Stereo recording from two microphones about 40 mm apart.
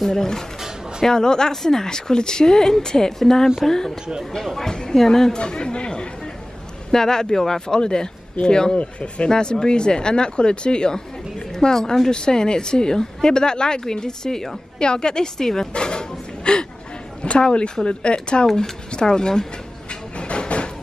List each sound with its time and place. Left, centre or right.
0.0 s speech: centre
5.4 s a woman's voice: left
9.3 s a woman's voice: centre
15.7 s a sound: left
17.2 s a woman's voice: left
19.9 s vehicle: left